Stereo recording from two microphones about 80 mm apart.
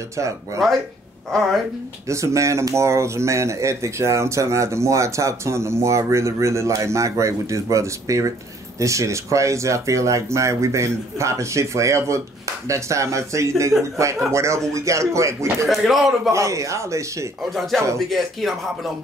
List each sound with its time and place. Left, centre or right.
1.3 s speech: centre
2.0 s speech: right
15.6 s speech: centre
16.3 s speech: right
17.4 s speech: centre